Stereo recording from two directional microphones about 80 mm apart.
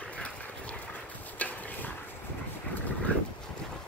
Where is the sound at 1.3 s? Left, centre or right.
Centre.